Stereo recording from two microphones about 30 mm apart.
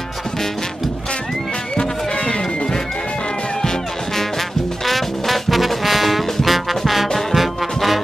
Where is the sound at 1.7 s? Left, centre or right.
Left.